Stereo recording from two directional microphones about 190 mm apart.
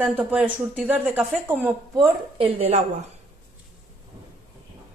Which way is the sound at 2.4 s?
30° right (ahead or behind).